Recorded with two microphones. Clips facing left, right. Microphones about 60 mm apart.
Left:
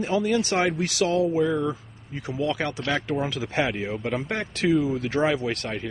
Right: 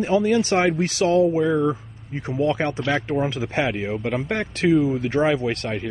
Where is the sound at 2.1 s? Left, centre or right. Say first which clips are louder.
Right 5 dB; right.